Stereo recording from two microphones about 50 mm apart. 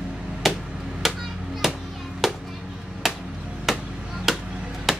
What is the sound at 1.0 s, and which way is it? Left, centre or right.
Chop, centre.